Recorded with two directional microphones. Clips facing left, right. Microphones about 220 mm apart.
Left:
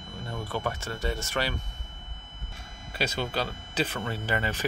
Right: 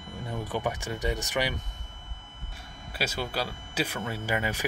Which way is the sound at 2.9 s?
5° right (ahead or behind).